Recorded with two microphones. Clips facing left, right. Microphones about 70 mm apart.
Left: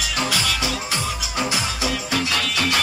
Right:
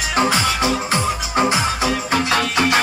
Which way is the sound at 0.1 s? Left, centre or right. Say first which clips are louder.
Right 7 dB; right.